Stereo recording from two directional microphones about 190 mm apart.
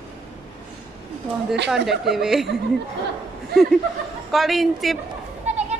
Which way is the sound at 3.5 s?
55° right (ahead or behind).